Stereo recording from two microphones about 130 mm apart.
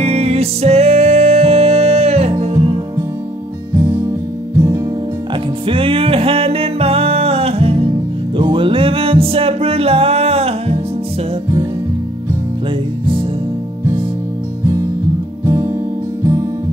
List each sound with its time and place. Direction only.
0.0 s music: 50° right (ahead or behind)
4.6 s music: 25° right (ahead or behind)
5.7 s music: 45° right (ahead or behind)
15.4 s music: 25° right (ahead or behind)